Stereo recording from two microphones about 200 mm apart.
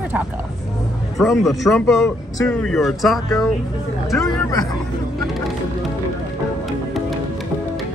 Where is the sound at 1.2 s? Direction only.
Centre (ahead or behind).